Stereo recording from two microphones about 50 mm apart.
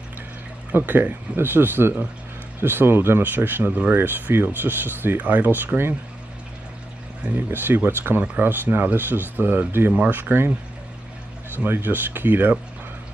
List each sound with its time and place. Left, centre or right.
0.7 s speech: right
7.3 s speech: right
11.5 s speech: right